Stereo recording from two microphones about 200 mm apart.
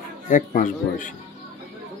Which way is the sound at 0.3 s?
40° left (ahead or behind).